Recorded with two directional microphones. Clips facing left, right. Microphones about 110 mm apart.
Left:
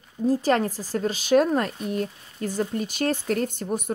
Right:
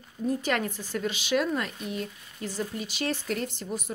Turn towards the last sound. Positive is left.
turn(degrees=50)  # may be behind; listen again after turning